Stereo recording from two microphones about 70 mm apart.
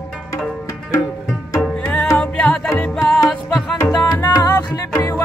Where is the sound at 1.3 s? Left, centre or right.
Centre.